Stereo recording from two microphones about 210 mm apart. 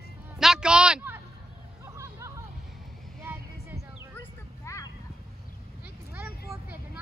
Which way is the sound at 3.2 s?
10° right (ahead or behind).